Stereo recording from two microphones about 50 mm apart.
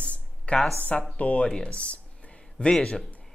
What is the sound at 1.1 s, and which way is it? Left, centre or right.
Speech, left.